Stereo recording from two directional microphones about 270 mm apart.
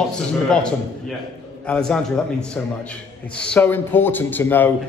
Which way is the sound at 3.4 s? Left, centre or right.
Centre.